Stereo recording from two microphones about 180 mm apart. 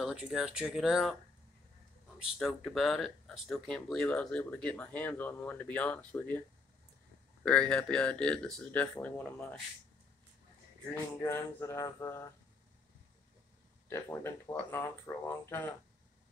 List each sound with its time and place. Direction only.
0.0 s speech: 5° right (ahead or behind)
2.3 s speech: centre (ahead or behind)
7.4 s speech: 5° left (ahead or behind)
11.2 s speech: 15° left (ahead or behind)
13.8 s speech: 15° left (ahead or behind)